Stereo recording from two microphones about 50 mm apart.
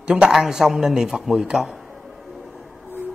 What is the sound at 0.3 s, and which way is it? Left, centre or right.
A man's voice, centre.